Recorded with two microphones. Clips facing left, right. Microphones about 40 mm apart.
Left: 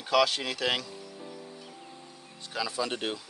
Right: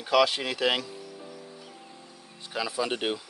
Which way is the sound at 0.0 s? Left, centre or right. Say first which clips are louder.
Right 2 dB; centre.